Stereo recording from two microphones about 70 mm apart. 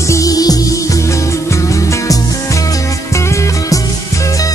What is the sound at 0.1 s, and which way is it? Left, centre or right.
Music, left.